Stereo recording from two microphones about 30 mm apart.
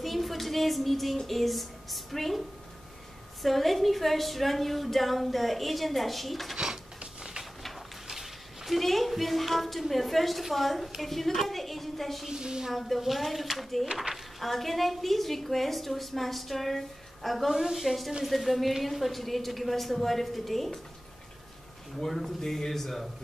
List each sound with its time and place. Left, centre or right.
0.0 s a woman's voice: centre
3.4 s a woman's voice: centre
6.5 s a sound: right
8.1 s a sound: centre
8.7 s a woman's voice: centre
12.3 s a woman's voice: right
12.7 s a woman's voice: centre
17.5 s a woman's voice: centre
22.0 s a man's voice: centre